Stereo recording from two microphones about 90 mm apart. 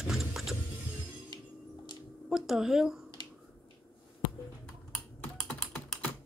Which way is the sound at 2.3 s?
5° right (ahead or behind).